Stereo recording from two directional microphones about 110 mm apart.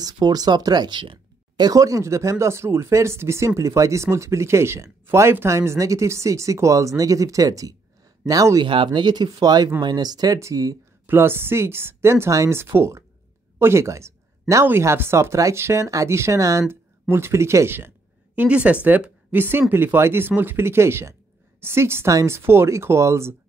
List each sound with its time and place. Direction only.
0.0 s speech: 35° right (ahead or behind)
1.7 s speech: 30° right (ahead or behind)
8.6 s speech: 50° right (ahead or behind); by 10.8 s 30° right (ahead or behind)
11.1 s speech: 20° right (ahead or behind)